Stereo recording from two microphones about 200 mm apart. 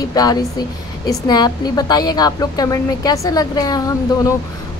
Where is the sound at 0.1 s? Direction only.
20° left (ahead or behind).